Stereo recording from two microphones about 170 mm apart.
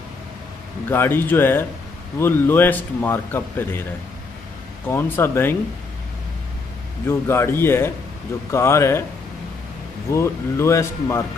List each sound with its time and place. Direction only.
0.8 s speech: 15° left (ahead or behind)
4.8 s speech: 15° left (ahead or behind)
7.1 s speech: 15° left (ahead or behind)
10.1 s speech: 15° left (ahead or behind)